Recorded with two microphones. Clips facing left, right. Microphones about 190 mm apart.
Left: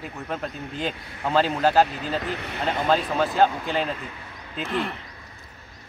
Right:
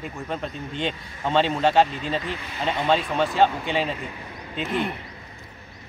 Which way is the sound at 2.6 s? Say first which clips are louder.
Even; centre (ahead or behind).